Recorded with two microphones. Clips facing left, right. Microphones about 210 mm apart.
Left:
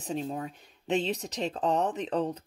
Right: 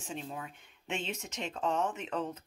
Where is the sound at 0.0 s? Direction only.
35° left (ahead or behind).